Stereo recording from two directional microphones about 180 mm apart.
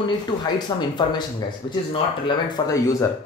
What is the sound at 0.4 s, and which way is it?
Speech, 25° left (ahead or behind).